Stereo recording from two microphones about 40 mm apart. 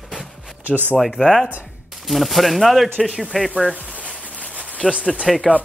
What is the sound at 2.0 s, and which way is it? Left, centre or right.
Speech, centre.